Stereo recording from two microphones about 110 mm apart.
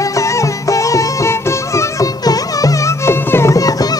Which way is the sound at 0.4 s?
30° left (ahead or behind).